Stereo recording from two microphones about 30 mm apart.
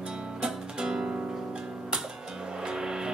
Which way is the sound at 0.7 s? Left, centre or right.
Right.